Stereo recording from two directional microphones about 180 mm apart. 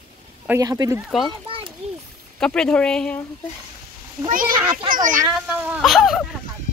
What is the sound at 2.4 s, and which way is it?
Speech, 5° left (ahead or behind).